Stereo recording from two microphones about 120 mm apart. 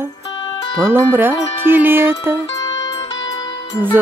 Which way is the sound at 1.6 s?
15° right (ahead or behind).